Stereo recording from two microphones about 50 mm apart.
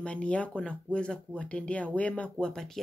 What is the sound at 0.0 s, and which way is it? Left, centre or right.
Speech, left.